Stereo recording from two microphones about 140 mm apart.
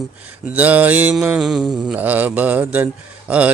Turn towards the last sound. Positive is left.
turn(degrees=-10)  # may be behind; listen again after turning